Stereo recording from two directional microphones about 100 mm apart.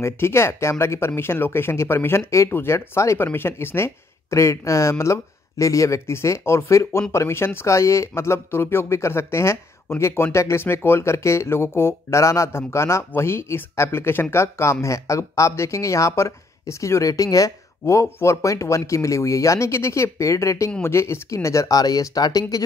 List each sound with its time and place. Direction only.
0.0 s speech: 25° left (ahead or behind)